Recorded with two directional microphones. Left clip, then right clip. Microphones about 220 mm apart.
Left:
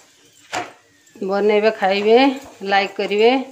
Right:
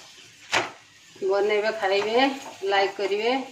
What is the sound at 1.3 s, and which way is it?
Speech, 50° left (ahead or behind).